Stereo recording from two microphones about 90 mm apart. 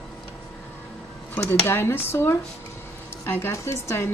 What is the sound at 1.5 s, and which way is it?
A woman's voice, 25° left (ahead or behind).